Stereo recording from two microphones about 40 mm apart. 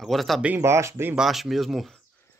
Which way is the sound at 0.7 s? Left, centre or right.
Right.